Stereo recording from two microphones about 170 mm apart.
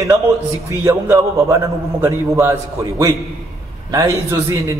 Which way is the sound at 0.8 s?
15° right (ahead or behind).